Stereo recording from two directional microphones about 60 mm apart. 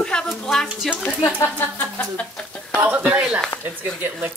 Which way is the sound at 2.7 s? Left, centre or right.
Right.